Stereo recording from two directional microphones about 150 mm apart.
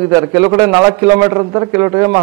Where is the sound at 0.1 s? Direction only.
15° right (ahead or behind).